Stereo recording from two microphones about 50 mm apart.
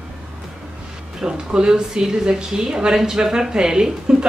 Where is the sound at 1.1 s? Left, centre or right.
Centre.